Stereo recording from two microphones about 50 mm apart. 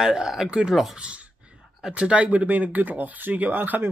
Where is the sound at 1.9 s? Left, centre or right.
Right.